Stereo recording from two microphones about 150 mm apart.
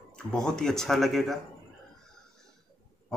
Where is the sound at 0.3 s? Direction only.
5° left (ahead or behind).